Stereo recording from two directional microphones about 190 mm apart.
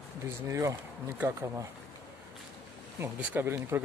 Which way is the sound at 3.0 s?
10° right (ahead or behind).